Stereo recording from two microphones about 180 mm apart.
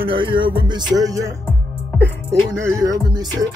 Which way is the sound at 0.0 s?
30° right (ahead or behind).